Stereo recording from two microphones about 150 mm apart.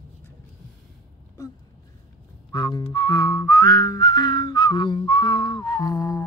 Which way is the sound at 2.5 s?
25° left (ahead or behind).